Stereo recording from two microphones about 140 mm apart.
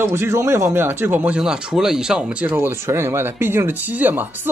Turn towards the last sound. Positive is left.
turn(degrees=-15)  # may be behind; listen again after turning